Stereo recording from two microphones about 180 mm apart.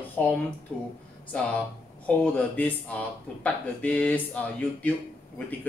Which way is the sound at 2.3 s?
10° left (ahead or behind).